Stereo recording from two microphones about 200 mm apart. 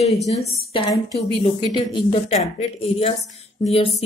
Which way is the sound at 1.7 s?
25° left (ahead or behind).